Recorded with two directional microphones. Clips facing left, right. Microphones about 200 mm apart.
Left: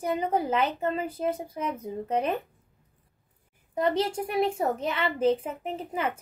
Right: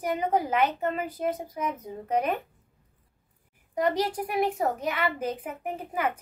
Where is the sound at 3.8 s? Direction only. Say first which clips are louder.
Even; 25° left (ahead or behind).